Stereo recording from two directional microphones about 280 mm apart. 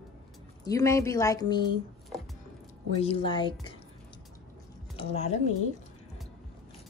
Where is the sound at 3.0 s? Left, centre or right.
Centre.